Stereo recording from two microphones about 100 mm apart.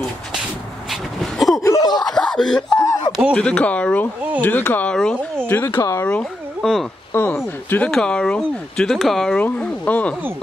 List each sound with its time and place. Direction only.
0.8 s a sound: centre (ahead or behind)
1.8 s a sound: 40° left (ahead or behind)
2.0 s a sound: 5° left (ahead or behind)
3.3 s speech: 10° left (ahead or behind)
4.8 s speech: 10° left (ahead or behind)
5.5 s speech: 20° left (ahead or behind)
6.6 s speech: centre (ahead or behind)
7.2 s speech: 20° left (ahead or behind)
7.9 s speech: 10° left (ahead or behind)
9.4 s speech: 15° left (ahead or behind)